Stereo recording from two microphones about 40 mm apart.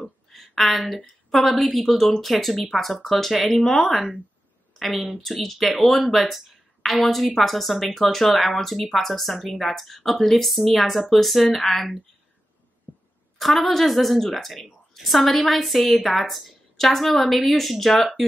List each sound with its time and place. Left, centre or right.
0.0 s speech: centre
13.4 s speech: centre